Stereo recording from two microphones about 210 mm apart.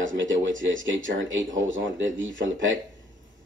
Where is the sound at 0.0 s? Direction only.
65° right (ahead or behind).